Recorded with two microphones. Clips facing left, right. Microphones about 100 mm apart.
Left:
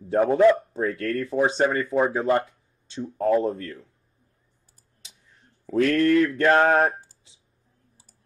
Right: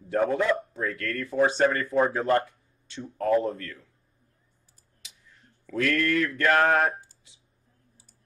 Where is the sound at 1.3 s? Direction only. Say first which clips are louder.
Even; 15° left (ahead or behind).